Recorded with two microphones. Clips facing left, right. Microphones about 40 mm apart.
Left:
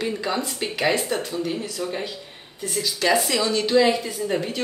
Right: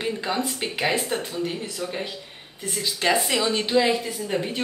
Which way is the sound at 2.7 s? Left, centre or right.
Right.